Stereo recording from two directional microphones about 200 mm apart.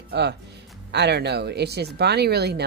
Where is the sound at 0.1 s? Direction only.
55° right (ahead or behind).